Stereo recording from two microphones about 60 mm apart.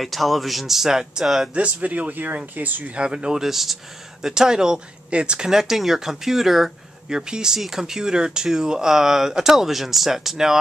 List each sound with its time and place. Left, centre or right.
0.0 s speech: centre
1.5 s speech: right
3.0 s speech: centre